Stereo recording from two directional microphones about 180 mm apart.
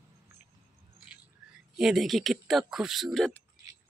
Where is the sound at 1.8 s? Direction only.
Centre (ahead or behind).